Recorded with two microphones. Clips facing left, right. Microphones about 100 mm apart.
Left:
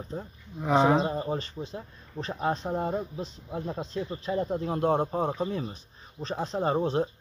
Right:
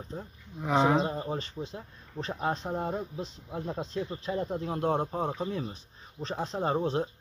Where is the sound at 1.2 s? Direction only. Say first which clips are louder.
Left 2 dB; centre (ahead or behind).